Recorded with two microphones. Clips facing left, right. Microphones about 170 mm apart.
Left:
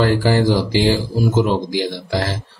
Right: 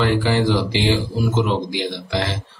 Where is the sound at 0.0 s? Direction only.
40° left (ahead or behind).